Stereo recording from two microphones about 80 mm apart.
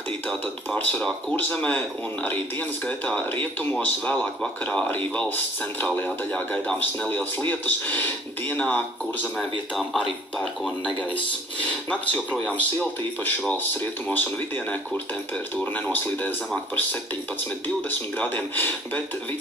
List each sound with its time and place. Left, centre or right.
0.7 s a man's voice: left
3.8 s a man's voice: centre
9.4 s speech: centre
11.9 s a man's voice: centre
15.5 s a man's voice: left
17.8 s a man's voice: left